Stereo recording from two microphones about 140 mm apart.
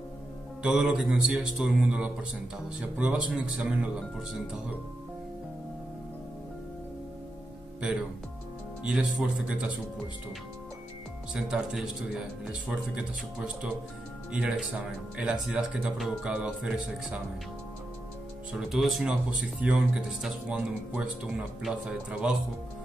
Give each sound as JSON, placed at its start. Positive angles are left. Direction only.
{"t": 0.6, "sound": "speech", "side_deg": -5}
{"t": 8.8, "sound": "speech", "side_deg": -5}
{"t": 11.3, "sound": "speech", "side_deg": -5}
{"t": 14.3, "sound": "speech", "side_deg": -10}
{"t": 18.6, "sound": "speech", "side_deg": 0}